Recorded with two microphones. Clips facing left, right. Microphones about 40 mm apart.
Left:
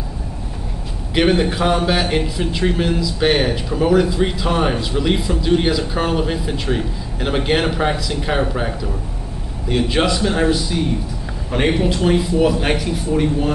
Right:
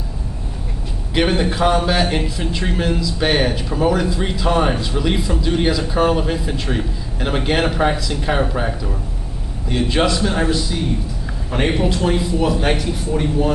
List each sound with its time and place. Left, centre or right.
1.1 s a man's voice: centre